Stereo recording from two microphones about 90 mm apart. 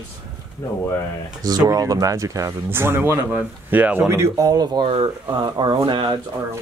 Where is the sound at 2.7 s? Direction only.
25° right (ahead or behind).